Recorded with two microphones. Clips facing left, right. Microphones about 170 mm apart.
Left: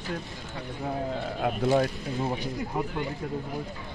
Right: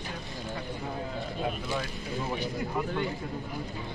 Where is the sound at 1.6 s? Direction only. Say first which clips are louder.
Left 10 dB; 40° left (ahead or behind).